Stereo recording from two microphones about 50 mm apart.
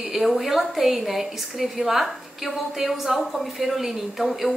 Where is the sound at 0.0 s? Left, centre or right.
Centre.